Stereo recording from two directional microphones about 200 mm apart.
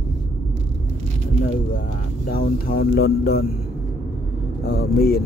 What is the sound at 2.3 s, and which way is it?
Speech, 45° left (ahead or behind).